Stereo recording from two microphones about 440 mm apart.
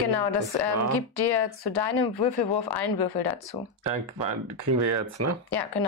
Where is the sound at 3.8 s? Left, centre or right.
Right.